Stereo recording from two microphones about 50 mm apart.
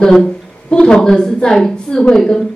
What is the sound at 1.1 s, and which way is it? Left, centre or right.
Speech, centre.